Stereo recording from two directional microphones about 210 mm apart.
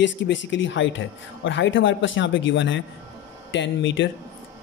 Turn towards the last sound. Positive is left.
turn(degrees=60)  # may be behind; listen again after turning